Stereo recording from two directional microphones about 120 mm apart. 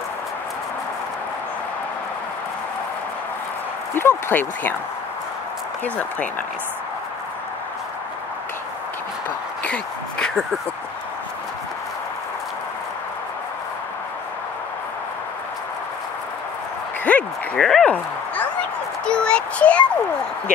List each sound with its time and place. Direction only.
4.0 s a child's voice: 15° left (ahead or behind)
9.6 s speech: 10° left (ahead or behind)
17.0 s speech: 10° left (ahead or behind)
19.0 s a child's voice: 10° left (ahead or behind)